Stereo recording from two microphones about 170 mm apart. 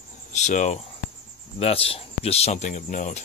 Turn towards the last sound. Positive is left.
turn(degrees=45)  # may be behind; listen again after turning